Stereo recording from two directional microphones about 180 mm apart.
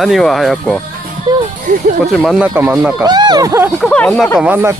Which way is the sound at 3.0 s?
25° right (ahead or behind).